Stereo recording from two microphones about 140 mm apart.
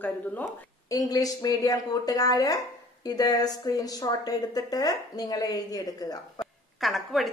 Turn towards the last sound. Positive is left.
turn(degrees=0)  # may be behind; listen again after turning